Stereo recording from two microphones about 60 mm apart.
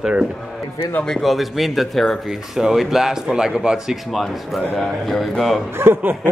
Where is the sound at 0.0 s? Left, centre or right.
Centre.